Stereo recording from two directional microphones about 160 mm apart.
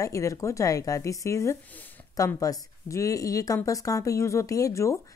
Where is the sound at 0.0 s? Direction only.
20° left (ahead or behind).